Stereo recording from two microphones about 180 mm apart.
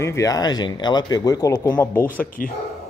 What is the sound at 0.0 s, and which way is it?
Speech, 15° left (ahead or behind).